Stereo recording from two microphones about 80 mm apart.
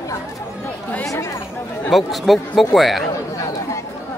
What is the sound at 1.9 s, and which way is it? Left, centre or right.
Speech, centre.